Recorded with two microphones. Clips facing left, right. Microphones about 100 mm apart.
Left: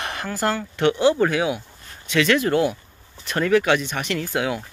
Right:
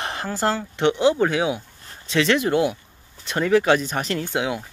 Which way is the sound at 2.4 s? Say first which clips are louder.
Even; 15° right (ahead or behind).